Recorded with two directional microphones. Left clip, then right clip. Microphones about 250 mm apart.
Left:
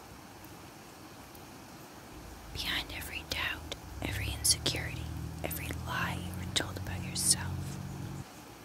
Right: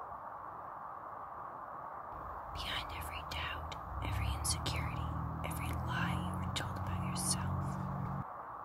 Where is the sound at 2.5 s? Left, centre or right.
Left.